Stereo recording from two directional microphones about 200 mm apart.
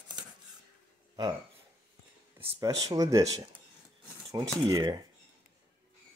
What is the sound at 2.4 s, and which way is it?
Speech, 20° right (ahead or behind).